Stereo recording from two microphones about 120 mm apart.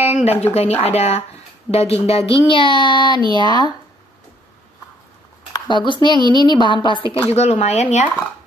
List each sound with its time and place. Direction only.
0.0 s a sound: 60° left (ahead or behind)
0.6 s speech: 60° left (ahead or behind); by 3.7 s 35° left (ahead or behind)
5.5 s speech: 40° left (ahead or behind)
7.3 s speech: 65° left (ahead or behind)